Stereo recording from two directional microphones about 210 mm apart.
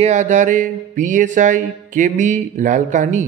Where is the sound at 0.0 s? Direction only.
35° right (ahead or behind).